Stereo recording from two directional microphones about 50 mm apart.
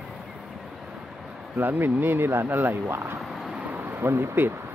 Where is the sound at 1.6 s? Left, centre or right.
Right.